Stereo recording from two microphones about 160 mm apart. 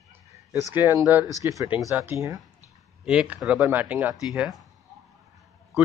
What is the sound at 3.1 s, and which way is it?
Speech, 5° right (ahead or behind).